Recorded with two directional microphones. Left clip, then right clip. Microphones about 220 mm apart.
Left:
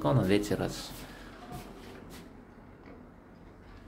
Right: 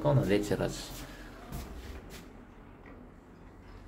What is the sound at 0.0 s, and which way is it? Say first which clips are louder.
Speech: left 1 dB; 20° left (ahead or behind).